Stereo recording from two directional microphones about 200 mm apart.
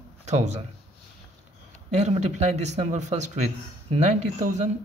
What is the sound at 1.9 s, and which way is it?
Speech, 35° right (ahead or behind).